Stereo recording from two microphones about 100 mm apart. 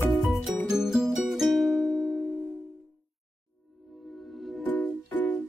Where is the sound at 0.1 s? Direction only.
Centre (ahead or behind).